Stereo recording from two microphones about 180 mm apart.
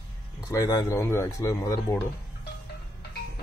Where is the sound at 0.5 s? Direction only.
15° left (ahead or behind).